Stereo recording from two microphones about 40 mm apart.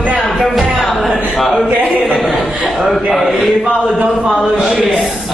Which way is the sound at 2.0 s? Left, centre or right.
Centre.